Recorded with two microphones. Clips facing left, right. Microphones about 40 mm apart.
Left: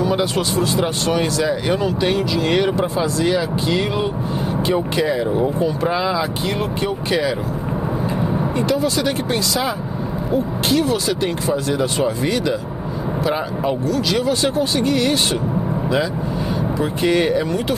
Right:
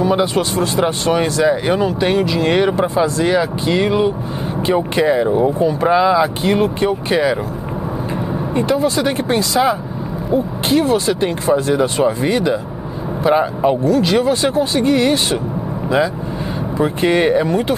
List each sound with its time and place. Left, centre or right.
0.0 s speech: right
0.4 s speech: right
4.9 s speech: right
5.9 s speech: centre
6.4 s speech: right
8.5 s speech: right
10.8 s speech: right
13.2 s speech: centre
13.8 s speech: right
16.7 s speech: right